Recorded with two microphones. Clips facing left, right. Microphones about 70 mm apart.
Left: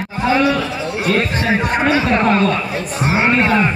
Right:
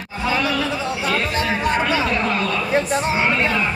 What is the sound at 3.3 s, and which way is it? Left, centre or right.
Music, left.